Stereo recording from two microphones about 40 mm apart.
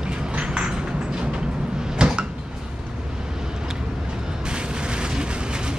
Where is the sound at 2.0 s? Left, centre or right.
Right.